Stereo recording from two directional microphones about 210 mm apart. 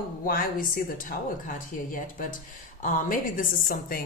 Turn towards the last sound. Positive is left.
turn(degrees=40)  # may be behind; listen again after turning